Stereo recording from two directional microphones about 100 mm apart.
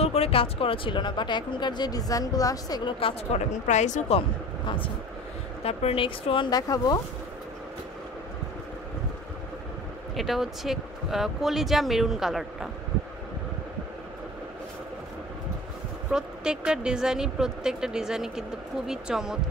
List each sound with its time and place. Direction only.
0.0 s speech: 90° left; by 2.9 s 40° left (ahead or behind)
3.3 s a woman's voice: 90° left
4.6 s speech: 60° left (ahead or behind)
5.6 s speech: 90° left; by 6.5 s 60° left (ahead or behind)
6.5 s speech: 40° left (ahead or behind)
10.1 s speech: centre (ahead or behind)
16.1 s a woman's voice: 10° right (ahead or behind)